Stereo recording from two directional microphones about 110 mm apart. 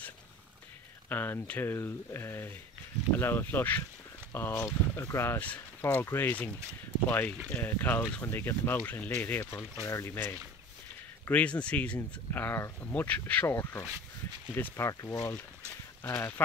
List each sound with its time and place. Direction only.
1.0 s speech: 15° left (ahead or behind)
11.2 s speech: 10° left (ahead or behind)